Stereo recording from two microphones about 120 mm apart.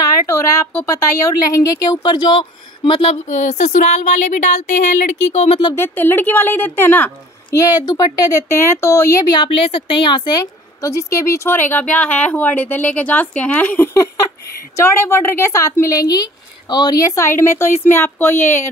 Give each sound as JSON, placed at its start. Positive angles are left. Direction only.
{"t": 0.3, "sound": "speech", "side_deg": 25}
{"t": 3.3, "sound": "speech", "side_deg": 90}
{"t": 5.8, "sound": "a woman's voice", "side_deg": 15}
{"t": 7.5, "sound": "speech", "side_deg": 35}
{"t": 9.4, "sound": "speech", "side_deg": 45}
{"t": 10.4, "sound": "a woman's voice", "side_deg": 25}